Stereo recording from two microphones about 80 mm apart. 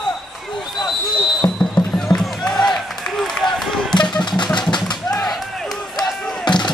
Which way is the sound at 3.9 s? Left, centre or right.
Left.